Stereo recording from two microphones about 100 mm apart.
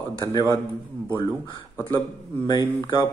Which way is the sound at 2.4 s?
45° left (ahead or behind).